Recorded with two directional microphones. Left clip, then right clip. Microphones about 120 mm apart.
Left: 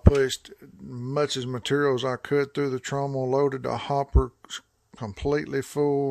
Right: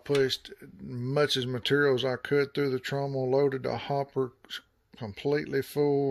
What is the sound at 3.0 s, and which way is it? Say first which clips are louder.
Speech: left 2 dB; 50° left (ahead or behind).